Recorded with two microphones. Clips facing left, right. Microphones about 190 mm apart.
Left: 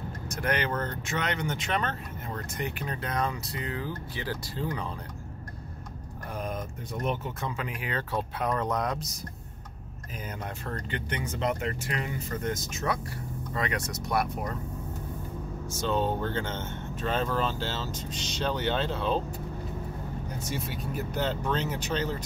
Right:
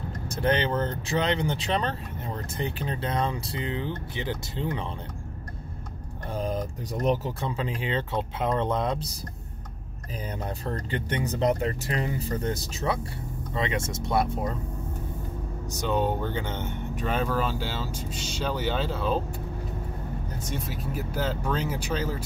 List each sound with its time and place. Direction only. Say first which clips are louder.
0.3 s speech: right 4 dB; 30° right (ahead or behind)
6.3 s speech: right 5 dB; 30° right (ahead or behind)
10.4 s speech: right 4 dB; 35° right (ahead or behind)
15.7 s speech: right 2 dB; 15° right (ahead or behind)
20.4 s speech: right 1 dB; centre (ahead or behind)